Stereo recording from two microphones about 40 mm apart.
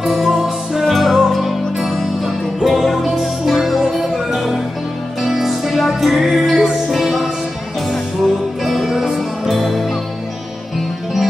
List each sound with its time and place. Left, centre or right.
0.0 s music: centre
8.6 s music: centre
8.9 s music: centre
9.5 s music: centre